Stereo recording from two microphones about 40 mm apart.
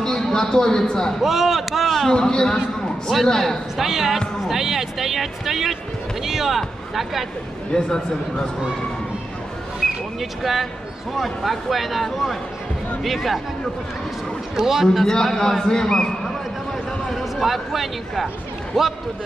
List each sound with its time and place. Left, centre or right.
0.0 s a man's voice: centre
1.2 s speech: centre
2.1 s speech: centre
3.3 s speech: centre
3.7 s speech: centre
7.7 s speech: centre
10.4 s speech: centre
14.5 s speech: centre
15.2 s a man's voice: centre
17.1 s speech: centre